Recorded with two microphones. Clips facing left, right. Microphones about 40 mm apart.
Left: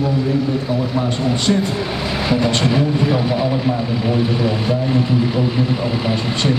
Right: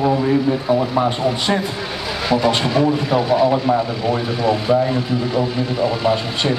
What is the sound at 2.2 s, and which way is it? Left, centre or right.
Speech, centre.